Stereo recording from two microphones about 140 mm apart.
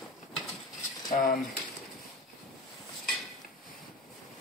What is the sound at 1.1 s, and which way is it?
Speech, 75° left (ahead or behind).